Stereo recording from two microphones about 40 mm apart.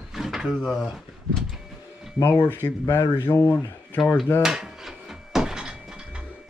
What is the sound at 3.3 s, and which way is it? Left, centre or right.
Speech, left.